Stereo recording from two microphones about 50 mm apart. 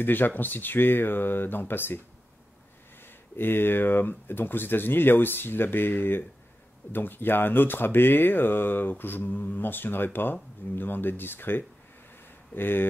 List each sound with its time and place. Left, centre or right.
0.0 s speech: left
3.3 s speech: left